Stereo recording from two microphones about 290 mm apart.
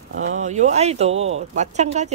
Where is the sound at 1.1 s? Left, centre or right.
Right.